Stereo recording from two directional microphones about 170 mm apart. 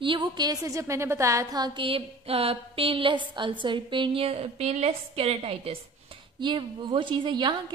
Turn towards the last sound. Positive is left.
turn(degrees=-30)  # may be behind; listen again after turning